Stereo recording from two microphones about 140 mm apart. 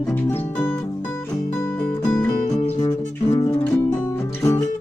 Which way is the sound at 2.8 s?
25° left (ahead or behind).